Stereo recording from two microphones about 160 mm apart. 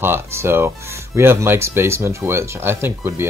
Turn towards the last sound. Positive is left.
turn(degrees=-15)  # may be behind; listen again after turning